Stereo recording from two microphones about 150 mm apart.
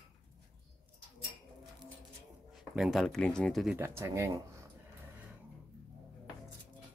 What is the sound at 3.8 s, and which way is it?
Speech, 20° right (ahead or behind).